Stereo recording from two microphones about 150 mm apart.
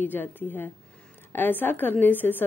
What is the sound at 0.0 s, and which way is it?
Speech, 15° left (ahead or behind).